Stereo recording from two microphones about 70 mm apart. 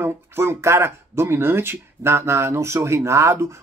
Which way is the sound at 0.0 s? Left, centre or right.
Right.